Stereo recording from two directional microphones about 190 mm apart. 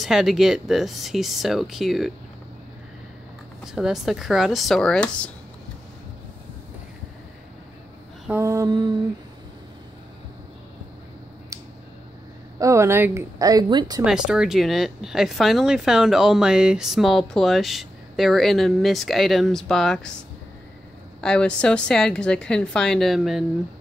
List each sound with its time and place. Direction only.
0.0 s speech: centre (ahead or behind)
3.6 s speech: centre (ahead or behind)
8.3 s speech: 15° right (ahead or behind)
11.5 s a sound: 15° right (ahead or behind)
12.5 s speech: 15° right (ahead or behind)
14.0 s speech: 5° right (ahead or behind)
21.2 s speech: 5° left (ahead or behind)